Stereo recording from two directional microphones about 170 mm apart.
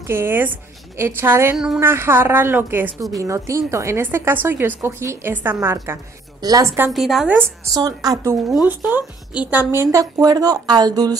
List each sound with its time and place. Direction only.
0.0 s a woman's voice: 15° right (ahead or behind)
6.9 s a woman's voice: centre (ahead or behind); by 11.1 s 25° right (ahead or behind)